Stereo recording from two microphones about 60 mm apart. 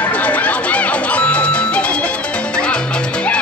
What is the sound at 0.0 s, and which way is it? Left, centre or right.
Music, left.